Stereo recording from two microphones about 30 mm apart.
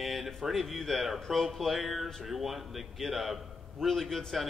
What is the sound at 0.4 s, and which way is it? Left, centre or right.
A man's voice, centre.